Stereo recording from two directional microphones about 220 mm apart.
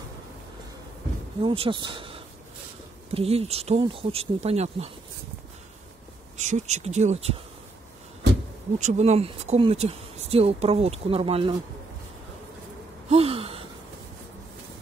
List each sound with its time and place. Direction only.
1.4 s speech: 25° right (ahead or behind)
6.3 s speech: 30° right (ahead or behind)
8.7 s speech: 30° right (ahead or behind)
13.1 s gasp: 25° right (ahead or behind)